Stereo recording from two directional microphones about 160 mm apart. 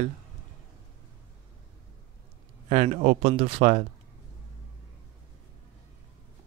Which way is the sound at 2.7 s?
40° right (ahead or behind).